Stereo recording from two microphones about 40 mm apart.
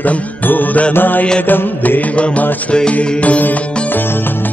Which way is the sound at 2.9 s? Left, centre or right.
Left.